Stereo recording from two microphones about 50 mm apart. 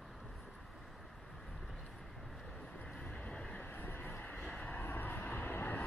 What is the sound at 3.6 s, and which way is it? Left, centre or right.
Vehicle, left.